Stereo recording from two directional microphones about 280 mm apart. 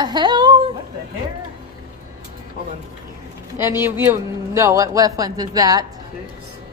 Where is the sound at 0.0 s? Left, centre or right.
Centre.